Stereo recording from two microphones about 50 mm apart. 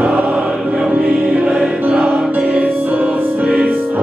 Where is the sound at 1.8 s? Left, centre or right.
Right.